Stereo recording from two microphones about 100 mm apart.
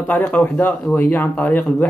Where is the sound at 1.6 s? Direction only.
5° left (ahead or behind).